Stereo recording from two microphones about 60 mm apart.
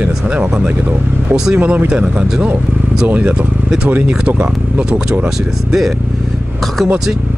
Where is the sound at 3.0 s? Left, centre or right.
Right.